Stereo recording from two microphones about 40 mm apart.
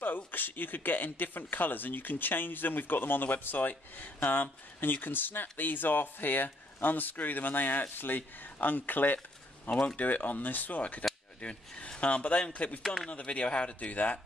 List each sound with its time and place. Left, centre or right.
0.0 s speech: left
11.4 s speech: left
12.8 s speech: centre
13.1 s speech: left